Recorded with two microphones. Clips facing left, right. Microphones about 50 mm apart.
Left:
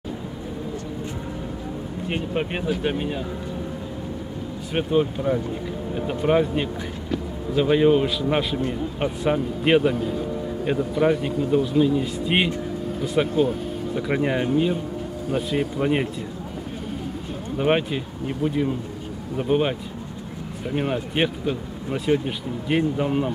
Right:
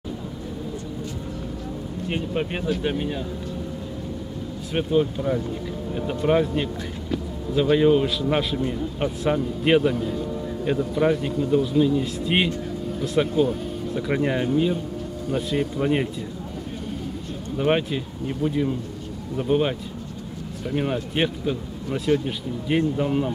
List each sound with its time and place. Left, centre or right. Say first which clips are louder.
2.0 s speech: even; centre
4.7 s speech: even; centre
17.6 s speech: left 1 dB; centre